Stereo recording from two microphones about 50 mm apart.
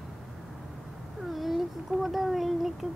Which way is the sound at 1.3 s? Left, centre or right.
Centre.